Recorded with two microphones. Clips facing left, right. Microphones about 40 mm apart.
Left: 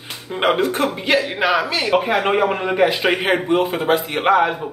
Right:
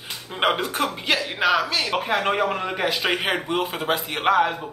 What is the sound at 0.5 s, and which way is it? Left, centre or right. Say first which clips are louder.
A man's voice: left 6 dB; centre.